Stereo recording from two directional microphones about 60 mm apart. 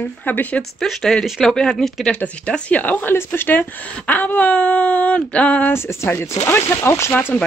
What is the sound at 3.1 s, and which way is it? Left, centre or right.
Speech, left.